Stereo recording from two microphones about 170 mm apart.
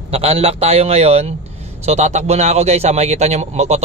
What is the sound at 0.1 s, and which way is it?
A man's voice, 35° right (ahead or behind).